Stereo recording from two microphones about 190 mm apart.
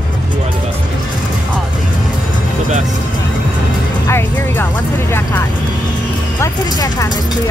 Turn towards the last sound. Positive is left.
turn(degrees=15)  # may be behind; listen again after turning